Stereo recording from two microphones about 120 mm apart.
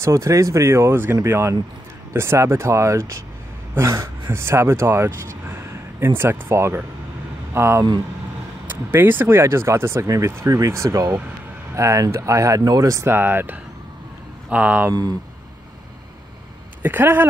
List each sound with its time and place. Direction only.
0.0 s speech: 25° right (ahead or behind)
5.5 s a sound: 20° right (ahead or behind)
7.5 s speech: 20° right (ahead or behind)
14.9 s speech: 35° right (ahead or behind)
16.8 s speech: 15° right (ahead or behind)